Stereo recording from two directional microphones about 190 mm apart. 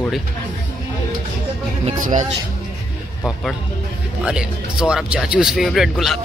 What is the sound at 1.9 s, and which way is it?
Speech, 40° right (ahead or behind).